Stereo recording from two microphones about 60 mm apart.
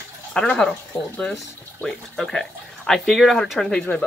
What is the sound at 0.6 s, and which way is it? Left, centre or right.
Speech, centre.